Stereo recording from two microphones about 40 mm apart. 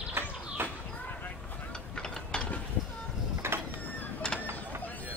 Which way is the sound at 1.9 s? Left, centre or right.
Left.